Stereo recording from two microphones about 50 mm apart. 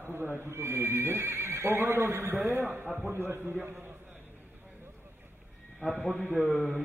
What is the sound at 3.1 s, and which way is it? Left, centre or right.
Speech, right.